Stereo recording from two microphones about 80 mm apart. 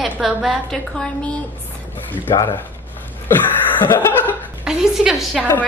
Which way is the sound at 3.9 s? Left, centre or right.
Left.